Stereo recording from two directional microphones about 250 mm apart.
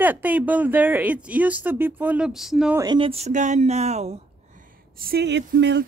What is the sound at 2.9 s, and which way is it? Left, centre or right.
Speech, right.